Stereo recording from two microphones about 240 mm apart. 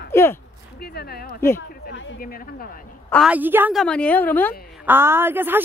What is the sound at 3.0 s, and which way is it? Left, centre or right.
A woman's voice, centre.